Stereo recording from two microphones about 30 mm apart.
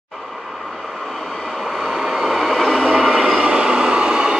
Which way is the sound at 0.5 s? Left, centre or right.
Centre.